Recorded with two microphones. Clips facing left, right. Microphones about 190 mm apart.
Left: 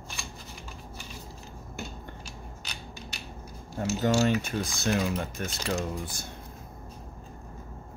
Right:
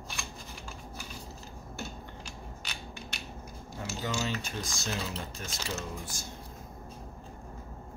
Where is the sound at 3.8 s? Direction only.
45° left (ahead or behind).